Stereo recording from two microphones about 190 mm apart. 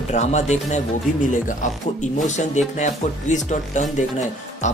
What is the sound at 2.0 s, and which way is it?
Speech, 40° left (ahead or behind).